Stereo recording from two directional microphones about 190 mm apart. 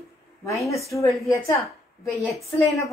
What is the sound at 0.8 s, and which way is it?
Speech, 15° left (ahead or behind).